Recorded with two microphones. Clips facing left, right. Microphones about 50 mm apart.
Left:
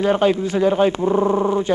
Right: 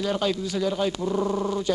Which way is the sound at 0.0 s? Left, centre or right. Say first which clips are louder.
Left 9 dB; left.